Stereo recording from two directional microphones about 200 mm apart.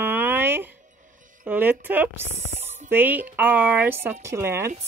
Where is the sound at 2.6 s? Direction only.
35° right (ahead or behind).